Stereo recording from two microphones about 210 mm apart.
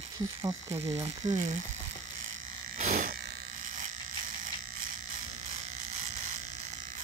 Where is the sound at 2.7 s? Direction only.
35° right (ahead or behind).